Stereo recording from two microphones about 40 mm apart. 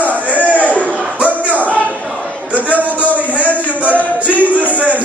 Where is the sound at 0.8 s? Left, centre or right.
Right.